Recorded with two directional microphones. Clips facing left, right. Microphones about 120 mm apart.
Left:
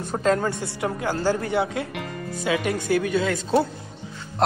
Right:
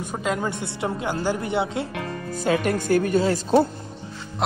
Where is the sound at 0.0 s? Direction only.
10° right (ahead or behind).